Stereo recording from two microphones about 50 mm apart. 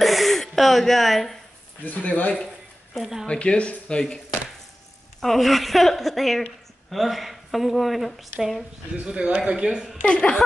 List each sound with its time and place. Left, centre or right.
0.0 s a sound: centre
1.9 s speech: left
2.9 s speech: centre
3.3 s speech: left; by 8.6 s centre
9.0 s a woman's voice: centre
10.0 s speech: left